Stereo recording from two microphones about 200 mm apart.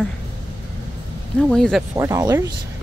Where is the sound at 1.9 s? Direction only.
20° right (ahead or behind).